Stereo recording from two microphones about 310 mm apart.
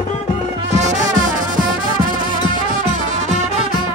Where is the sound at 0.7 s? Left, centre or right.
Right.